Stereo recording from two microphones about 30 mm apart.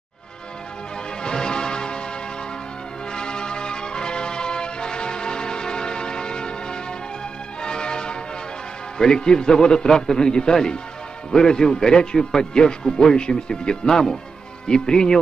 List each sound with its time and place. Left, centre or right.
1.2 s music: left
8.9 s a man's voice: left
13.8 s a man's voice: centre